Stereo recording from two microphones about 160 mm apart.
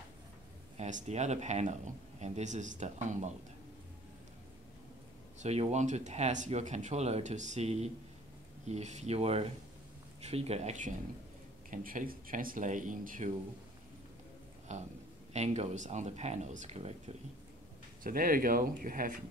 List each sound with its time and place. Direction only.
0.7 s speech: 50° right (ahead or behind)
5.4 s speech: 45° right (ahead or behind)
11.7 s speech: 60° right (ahead or behind)
14.7 s speech: 45° right (ahead or behind)
18.0 s speech: 60° right (ahead or behind)